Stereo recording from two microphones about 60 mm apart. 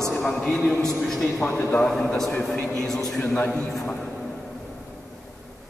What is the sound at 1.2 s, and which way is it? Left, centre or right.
Speech, left.